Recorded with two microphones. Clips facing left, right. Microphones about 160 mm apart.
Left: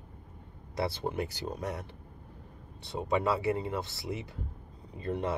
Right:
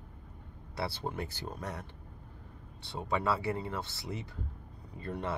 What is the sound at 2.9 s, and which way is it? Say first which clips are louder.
Speech: left 3 dB; 15° left (ahead or behind).